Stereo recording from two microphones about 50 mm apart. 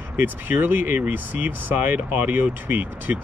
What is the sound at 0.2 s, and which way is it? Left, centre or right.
Speech, right.